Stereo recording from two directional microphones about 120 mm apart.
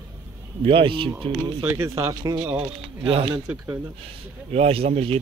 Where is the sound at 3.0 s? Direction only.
50° right (ahead or behind).